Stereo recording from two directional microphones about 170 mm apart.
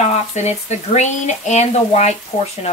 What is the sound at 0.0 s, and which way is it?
Speech, 45° left (ahead or behind).